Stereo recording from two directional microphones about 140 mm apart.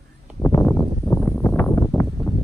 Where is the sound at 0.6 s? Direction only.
15° left (ahead or behind).